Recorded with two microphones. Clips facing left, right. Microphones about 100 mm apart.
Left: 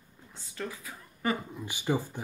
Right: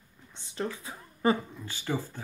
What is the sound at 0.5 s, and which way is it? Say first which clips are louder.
Speech: right 4 dB; 25° right (ahead or behind).